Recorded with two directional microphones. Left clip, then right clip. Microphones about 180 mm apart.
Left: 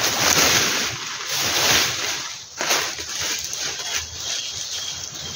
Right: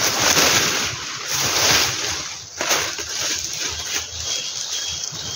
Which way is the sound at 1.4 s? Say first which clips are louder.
Right 1 dB; 10° right (ahead or behind).